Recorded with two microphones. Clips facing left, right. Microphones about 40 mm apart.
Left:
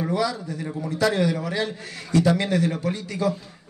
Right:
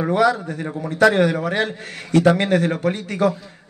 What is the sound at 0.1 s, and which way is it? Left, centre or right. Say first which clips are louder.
A man's voice: right 7 dB; right.